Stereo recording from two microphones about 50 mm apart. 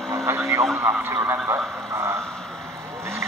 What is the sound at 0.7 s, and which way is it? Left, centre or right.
Speech, right.